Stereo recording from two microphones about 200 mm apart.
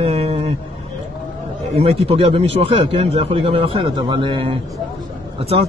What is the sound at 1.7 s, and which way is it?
Speech, 30° right (ahead or behind).